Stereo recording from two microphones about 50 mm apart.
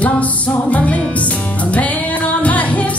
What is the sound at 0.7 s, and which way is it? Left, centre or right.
Music, left.